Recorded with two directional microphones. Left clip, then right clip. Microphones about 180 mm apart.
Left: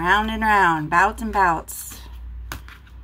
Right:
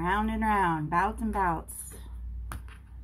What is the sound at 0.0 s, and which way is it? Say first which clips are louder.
Speech: left 9 dB; 10° left (ahead or behind).